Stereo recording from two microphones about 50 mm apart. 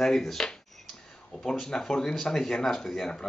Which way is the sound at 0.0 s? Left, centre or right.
Centre.